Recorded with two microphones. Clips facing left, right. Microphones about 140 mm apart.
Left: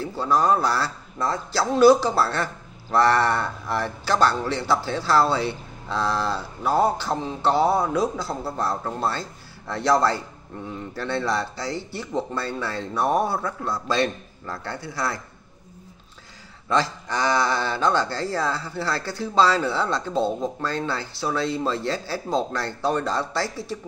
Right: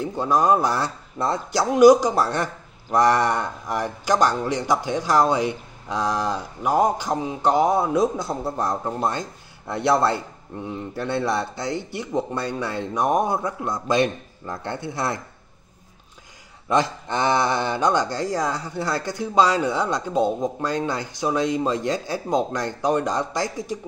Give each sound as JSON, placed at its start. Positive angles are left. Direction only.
{"t": 0.0, "sound": "speech", "side_deg": -20}
{"t": 16.6, "sound": "speech", "side_deg": -20}